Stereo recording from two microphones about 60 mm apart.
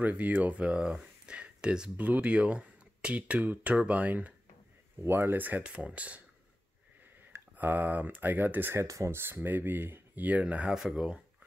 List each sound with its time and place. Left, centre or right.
0.0 s speech: right
5.0 s speech: right
7.5 s speech: right
8.8 s speech: right
9.1 s speech: right; by 11.1 s centre